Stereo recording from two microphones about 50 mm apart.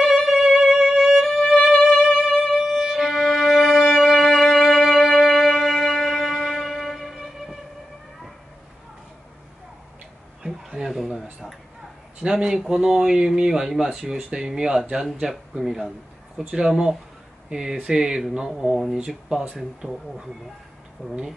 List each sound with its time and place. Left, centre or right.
0.0 s music: centre
1.4 s music: centre
1.8 s music: centre
4.7 s music: centre
10.9 s a sound: centre
12.2 s speech: centre
21.0 s speech: centre